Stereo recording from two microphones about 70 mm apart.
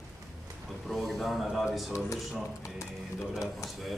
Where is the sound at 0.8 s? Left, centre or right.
Centre.